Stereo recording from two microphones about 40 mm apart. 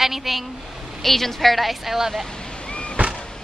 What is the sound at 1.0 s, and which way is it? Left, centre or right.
Speech, centre.